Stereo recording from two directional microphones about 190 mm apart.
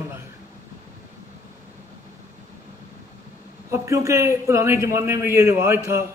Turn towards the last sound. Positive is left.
turn(degrees=-15)  # may be behind; listen again after turning